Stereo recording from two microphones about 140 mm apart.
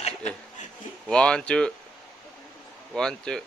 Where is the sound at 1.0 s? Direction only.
5° left (ahead or behind).